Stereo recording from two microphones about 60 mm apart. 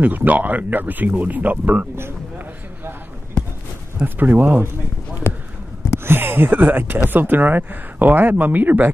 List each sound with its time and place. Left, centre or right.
0.0 s speech: right
4.0 s speech: right
6.0 s speech: right